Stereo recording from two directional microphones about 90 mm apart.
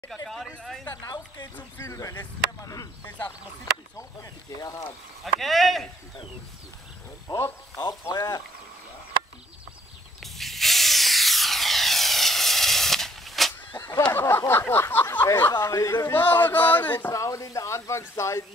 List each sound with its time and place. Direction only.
0.3 s speech: 5° left (ahead or behind)
0.8 s speech: 50° left (ahead or behind)
1.8 s speech: 35° left (ahead or behind)
3.1 s a sound: 20° left (ahead or behind)
4.2 s speech: 40° left (ahead or behind)
5.2 s speech: centre (ahead or behind)
7.2 s speech: 35° left (ahead or behind)
10.2 s a sound: centre (ahead or behind)
14.1 s a sound: 30° left (ahead or behind)
15.6 s speech: 35° left (ahead or behind)
16.1 s a sound: 20° left (ahead or behind)
17.1 s speech: 35° left (ahead or behind)